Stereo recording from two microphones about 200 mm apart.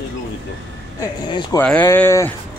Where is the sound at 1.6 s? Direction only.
10° left (ahead or behind).